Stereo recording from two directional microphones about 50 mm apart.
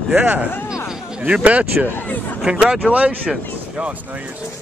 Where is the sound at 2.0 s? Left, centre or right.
Left.